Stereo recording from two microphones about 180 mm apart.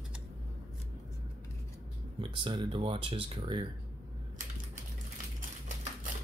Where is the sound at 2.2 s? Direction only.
30° right (ahead or behind).